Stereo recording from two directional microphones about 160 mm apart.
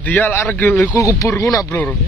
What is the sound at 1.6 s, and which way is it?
Speech, 5° left (ahead or behind).